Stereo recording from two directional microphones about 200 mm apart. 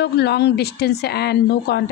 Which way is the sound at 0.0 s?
55° left (ahead or behind).